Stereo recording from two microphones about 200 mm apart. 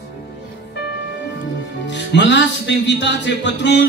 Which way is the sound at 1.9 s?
65° left (ahead or behind).